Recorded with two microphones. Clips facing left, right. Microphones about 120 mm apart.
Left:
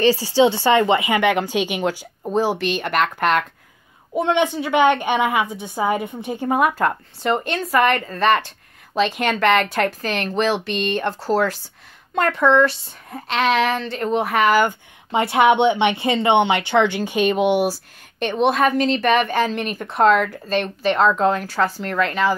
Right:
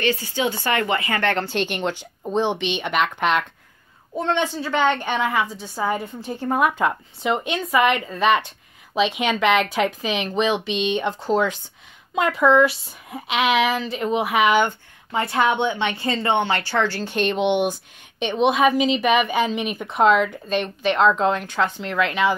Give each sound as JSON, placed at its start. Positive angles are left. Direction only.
{"t": 0.0, "sound": "a woman's voice", "side_deg": 30}
{"t": 4.1, "sound": "a woman's voice", "side_deg": 15}
{"t": 6.5, "sound": "speech", "side_deg": 5}
{"t": 15.0, "sound": "speech", "side_deg": 25}